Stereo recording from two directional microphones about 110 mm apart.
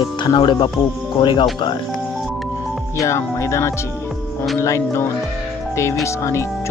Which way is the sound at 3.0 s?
25° left (ahead or behind).